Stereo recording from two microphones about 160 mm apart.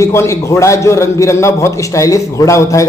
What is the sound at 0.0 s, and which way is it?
A man's voice, 15° left (ahead or behind).